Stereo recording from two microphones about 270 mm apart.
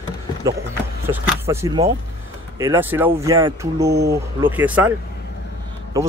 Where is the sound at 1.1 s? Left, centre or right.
Centre.